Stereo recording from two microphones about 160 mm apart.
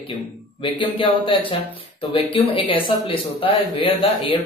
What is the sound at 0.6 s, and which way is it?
Speech, 30° left (ahead or behind).